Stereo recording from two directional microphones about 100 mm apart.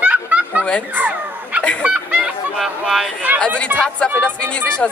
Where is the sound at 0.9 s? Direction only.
15° right (ahead or behind).